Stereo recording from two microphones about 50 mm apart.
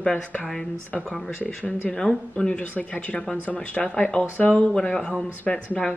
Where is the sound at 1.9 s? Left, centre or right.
Centre.